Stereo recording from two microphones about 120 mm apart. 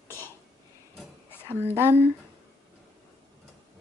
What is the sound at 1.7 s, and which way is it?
Speech, 20° right (ahead or behind).